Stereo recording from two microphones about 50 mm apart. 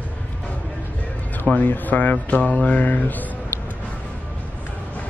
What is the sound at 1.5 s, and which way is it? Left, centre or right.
Speech, left.